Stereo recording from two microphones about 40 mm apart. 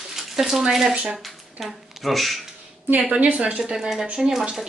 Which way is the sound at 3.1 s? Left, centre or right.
Right.